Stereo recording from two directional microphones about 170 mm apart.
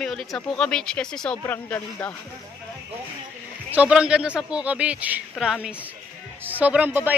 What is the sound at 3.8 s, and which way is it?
Speech, 5° right (ahead or behind).